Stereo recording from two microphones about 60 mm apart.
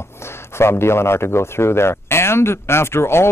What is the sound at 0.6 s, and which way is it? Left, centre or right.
Speech, left.